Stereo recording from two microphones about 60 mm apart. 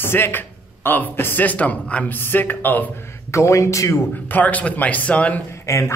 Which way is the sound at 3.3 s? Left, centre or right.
Left.